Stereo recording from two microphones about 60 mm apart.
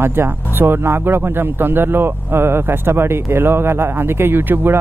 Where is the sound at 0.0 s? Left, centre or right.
Right.